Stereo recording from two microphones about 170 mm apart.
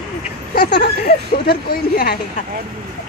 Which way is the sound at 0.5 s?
65° left (ahead or behind).